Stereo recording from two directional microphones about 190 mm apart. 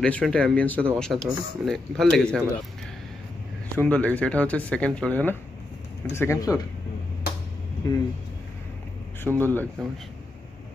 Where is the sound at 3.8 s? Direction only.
5° left (ahead or behind).